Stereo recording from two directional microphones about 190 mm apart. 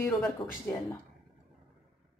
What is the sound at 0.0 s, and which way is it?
Speech, centre (ahead or behind).